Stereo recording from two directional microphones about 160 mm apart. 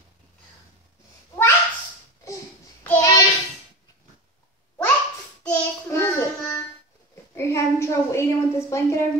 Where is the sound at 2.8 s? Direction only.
15° left (ahead or behind).